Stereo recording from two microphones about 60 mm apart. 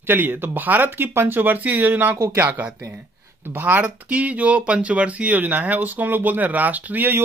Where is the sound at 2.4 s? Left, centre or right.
Right.